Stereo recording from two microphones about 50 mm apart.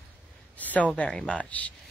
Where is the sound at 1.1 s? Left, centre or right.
Centre.